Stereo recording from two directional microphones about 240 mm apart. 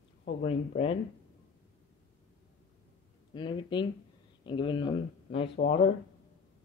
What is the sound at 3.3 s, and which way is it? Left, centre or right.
Speech, centre.